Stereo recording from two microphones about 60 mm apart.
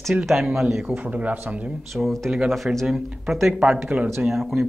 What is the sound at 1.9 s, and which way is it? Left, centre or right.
Speech, centre.